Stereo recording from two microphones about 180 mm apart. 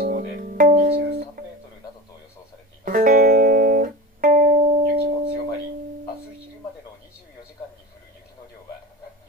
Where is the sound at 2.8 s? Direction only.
50° right (ahead or behind).